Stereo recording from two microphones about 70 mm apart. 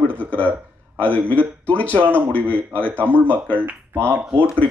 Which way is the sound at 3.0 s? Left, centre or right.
Right.